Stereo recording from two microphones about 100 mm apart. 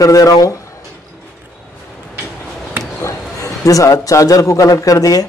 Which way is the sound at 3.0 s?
30° left (ahead or behind).